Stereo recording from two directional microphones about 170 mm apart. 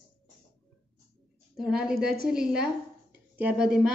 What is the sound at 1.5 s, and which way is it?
A woman's voice, 5° right (ahead or behind).